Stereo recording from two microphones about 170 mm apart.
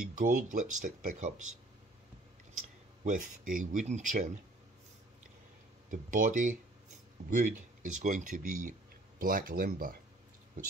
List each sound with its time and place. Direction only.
0.1 s speech: 50° right (ahead or behind)
2.5 s speech: 50° right (ahead or behind)
5.9 s speech: 50° right (ahead or behind)